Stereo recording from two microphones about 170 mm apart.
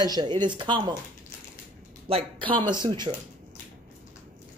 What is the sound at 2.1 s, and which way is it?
A man's voice, 30° right (ahead or behind).